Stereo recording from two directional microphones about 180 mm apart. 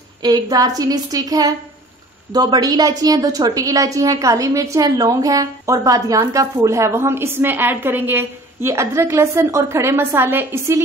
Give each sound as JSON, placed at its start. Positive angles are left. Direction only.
{"t": 0.2, "sound": "a woman's voice", "side_deg": -20}